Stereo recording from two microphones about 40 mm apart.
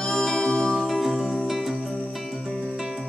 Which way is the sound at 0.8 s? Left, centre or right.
Centre.